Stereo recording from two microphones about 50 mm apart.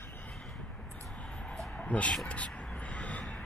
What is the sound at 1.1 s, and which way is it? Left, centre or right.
Vehicle, left.